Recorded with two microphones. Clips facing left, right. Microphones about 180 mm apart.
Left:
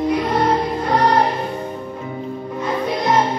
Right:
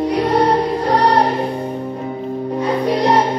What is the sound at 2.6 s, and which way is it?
Music, 35° right (ahead or behind).